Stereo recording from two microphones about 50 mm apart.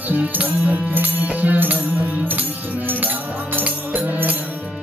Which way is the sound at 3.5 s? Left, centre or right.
Right.